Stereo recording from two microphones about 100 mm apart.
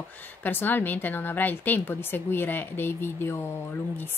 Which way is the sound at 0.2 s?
20° left (ahead or behind).